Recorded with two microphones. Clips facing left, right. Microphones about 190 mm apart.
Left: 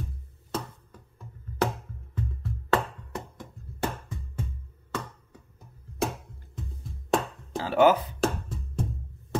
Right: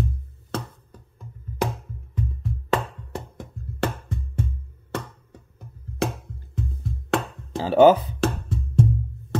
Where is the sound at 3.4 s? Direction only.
65° right (ahead or behind).